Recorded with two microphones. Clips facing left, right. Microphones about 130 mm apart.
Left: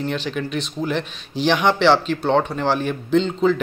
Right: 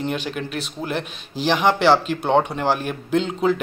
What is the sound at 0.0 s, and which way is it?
A man's voice, 5° right (ahead or behind).